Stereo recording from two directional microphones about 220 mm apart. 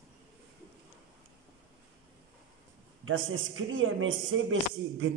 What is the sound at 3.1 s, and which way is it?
A man's voice, 65° right (ahead or behind).